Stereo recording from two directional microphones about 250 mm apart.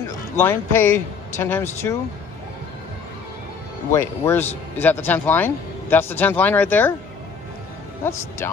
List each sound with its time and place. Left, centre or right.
0.4 s a man's voice: centre
3.9 s a man's voice: centre